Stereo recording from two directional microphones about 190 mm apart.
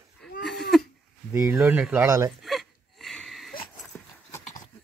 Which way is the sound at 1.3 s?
15° right (ahead or behind).